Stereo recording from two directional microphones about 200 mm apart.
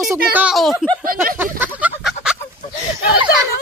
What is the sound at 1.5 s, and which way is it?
Chicken, 10° right (ahead or behind).